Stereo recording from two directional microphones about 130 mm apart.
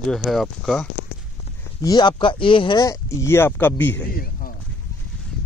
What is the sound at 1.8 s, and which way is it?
Speech, 30° left (ahead or behind).